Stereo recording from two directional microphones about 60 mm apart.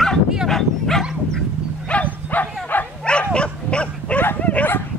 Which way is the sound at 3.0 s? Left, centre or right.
Centre.